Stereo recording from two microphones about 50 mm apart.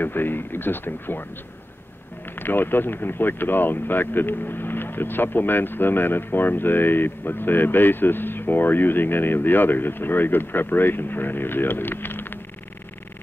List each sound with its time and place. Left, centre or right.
0.0 s speech: left
2.2 s speech: left